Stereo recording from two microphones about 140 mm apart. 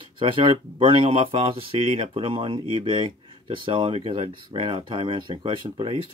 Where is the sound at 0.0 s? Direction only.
35° right (ahead or behind).